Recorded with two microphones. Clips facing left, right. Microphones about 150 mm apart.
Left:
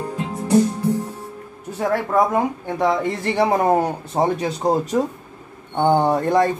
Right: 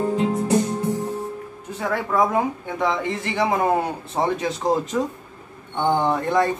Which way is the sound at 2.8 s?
40° left (ahead or behind).